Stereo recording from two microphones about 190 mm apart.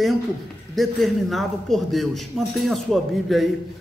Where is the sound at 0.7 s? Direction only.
Centre (ahead or behind).